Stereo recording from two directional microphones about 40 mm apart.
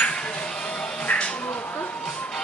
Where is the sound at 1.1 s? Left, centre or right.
Left.